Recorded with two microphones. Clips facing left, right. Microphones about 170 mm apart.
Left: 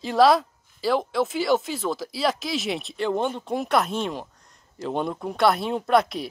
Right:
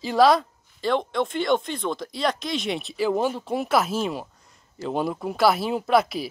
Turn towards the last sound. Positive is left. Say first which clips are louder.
# even
turn(degrees=0)  # may be behind; listen again after turning